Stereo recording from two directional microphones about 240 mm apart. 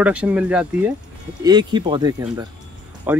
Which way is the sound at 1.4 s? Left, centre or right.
Centre.